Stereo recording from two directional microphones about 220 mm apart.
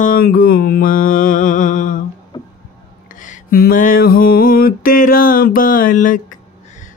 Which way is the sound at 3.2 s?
40° left (ahead or behind).